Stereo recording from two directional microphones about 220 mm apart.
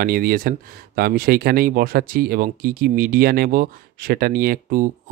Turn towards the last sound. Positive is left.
turn(degrees=-40)  # may be behind; listen again after turning